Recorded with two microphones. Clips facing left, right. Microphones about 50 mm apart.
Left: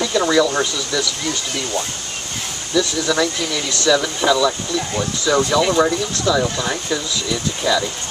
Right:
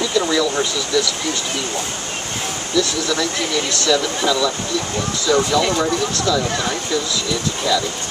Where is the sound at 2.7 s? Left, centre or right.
Centre.